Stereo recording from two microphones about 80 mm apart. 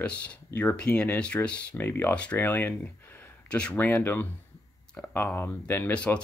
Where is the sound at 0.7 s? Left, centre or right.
Centre.